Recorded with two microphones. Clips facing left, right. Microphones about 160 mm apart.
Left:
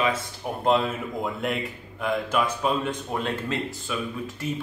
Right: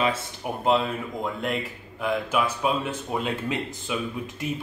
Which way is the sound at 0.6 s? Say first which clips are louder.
Left 1 dB; centre (ahead or behind).